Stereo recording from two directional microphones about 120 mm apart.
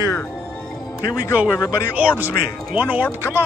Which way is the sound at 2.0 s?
10° right (ahead or behind).